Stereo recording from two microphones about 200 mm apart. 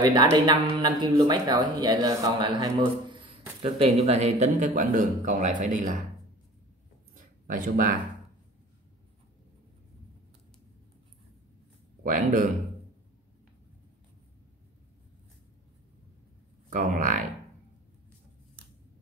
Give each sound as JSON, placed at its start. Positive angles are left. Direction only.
{"t": 0.0, "sound": "a man's voice", "side_deg": -20}
{"t": 7.4, "sound": "speech", "side_deg": -45}
{"t": 12.0, "sound": "speech", "side_deg": -40}
{"t": 16.7, "sound": "a man's voice", "side_deg": -40}